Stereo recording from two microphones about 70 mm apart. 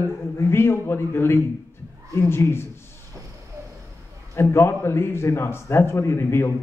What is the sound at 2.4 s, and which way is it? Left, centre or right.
Speech, left.